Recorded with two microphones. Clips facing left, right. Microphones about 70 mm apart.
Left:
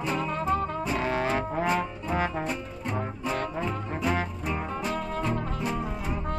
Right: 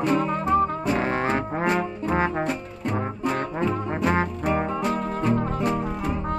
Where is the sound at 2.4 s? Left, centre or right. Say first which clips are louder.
Right 5 dB; right.